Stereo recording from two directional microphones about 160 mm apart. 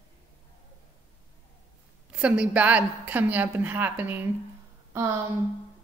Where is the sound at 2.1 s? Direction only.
5° right (ahead or behind).